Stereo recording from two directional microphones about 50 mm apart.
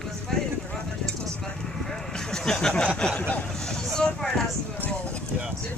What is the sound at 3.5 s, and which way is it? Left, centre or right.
Vehicle, centre.